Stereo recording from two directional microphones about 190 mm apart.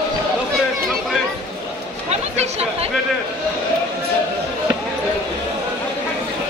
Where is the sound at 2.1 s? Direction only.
35° right (ahead or behind).